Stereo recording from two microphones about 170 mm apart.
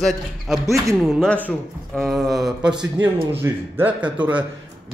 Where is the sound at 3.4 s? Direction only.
10° right (ahead or behind).